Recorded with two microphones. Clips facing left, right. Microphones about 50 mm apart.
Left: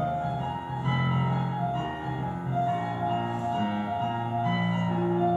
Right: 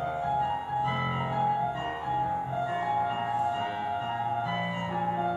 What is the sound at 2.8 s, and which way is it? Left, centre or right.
Music, centre.